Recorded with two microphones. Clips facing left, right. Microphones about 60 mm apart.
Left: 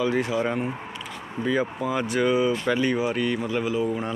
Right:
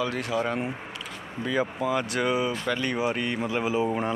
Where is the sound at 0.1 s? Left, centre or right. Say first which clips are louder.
Left 3 dB; centre.